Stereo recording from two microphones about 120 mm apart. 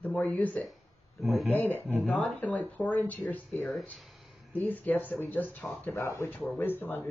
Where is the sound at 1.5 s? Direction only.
15° left (ahead or behind).